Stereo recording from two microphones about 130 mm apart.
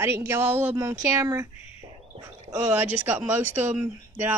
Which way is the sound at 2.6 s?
10° right (ahead or behind).